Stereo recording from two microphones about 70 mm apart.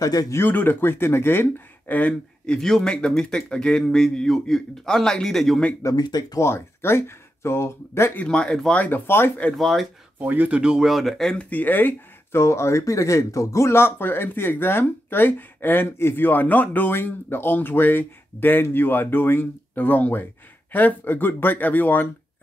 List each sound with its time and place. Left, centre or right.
0.0 s speech: left
0.5 s speech: left
2.4 s a man's voice: centre
5.9 s speech: left
6.4 s speech: left
8.3 s a man's voice: centre
9.0 s speech: left
9.5 s speech: centre
10.1 s speech: right
10.6 s speech: centre
11.5 s speech: left